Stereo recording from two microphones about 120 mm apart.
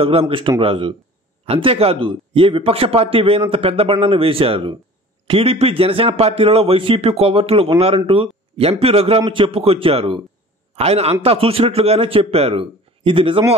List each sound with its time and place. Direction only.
0.0 s a man's voice: 50° right (ahead or behind)